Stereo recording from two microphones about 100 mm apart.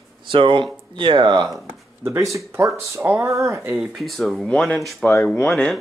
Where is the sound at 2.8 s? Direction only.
25° right (ahead or behind).